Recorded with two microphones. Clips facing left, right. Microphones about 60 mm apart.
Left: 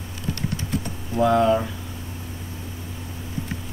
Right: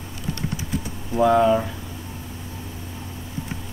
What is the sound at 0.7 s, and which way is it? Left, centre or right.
Typing, centre.